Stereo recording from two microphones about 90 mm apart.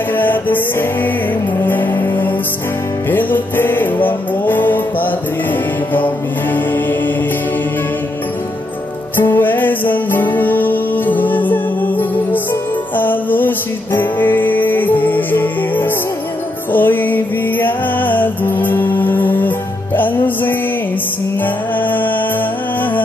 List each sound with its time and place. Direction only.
0.1 s music: 20° left (ahead or behind)
9.1 s music: 25° left (ahead or behind)